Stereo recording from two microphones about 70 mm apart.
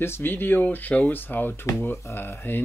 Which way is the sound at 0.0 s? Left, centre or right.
Left.